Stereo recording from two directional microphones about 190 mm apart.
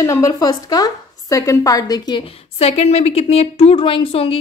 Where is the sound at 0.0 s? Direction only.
15° left (ahead or behind).